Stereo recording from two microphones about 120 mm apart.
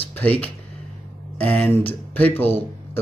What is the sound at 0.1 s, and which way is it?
Speech, 10° left (ahead or behind).